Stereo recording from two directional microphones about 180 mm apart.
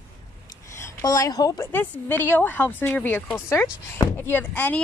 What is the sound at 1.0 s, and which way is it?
Speech, 20° left (ahead or behind).